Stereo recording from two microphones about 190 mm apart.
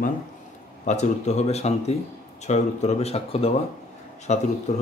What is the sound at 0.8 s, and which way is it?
Speech, 40° left (ahead or behind).